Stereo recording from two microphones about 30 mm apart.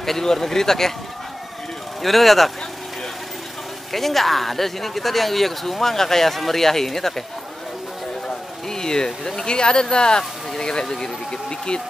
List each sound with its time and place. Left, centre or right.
0.0 s speech: centre
2.0 s speech: centre
3.9 s speech: centre
8.3 s speech: left